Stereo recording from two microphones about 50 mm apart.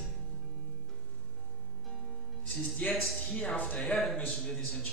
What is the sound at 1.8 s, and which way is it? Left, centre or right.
Music, centre.